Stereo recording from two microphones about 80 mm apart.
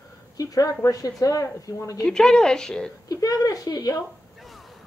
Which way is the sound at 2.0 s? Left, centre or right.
Centre.